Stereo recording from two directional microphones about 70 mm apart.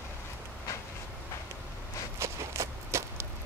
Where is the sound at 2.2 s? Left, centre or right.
Right.